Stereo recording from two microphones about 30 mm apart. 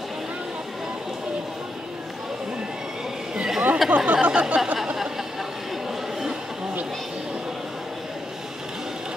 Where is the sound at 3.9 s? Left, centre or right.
Right.